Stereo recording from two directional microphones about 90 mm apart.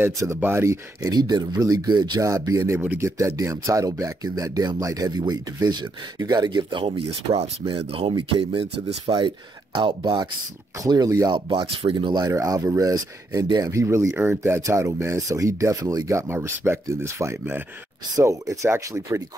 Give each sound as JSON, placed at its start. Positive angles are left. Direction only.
{"t": 0.2, "sound": "speech", "side_deg": -30}
{"t": 1.0, "sound": "speech", "side_deg": -50}
{"t": 6.7, "sound": "speech", "side_deg": -80}
{"t": 9.8, "sound": "speech", "side_deg": -55}
{"t": 10.8, "sound": "speech", "side_deg": -40}
{"t": 11.2, "sound": "speech", "side_deg": -65}
{"t": 12.3, "sound": "speech", "side_deg": -40}
{"t": 16.1, "sound": "speech", "side_deg": -30}